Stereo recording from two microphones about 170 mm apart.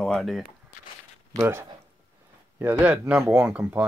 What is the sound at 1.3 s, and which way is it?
Speech, 15° right (ahead or behind).